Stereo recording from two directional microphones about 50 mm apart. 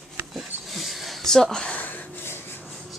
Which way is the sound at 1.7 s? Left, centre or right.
Left.